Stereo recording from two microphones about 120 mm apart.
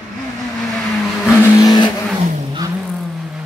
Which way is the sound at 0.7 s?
Centre (ahead or behind).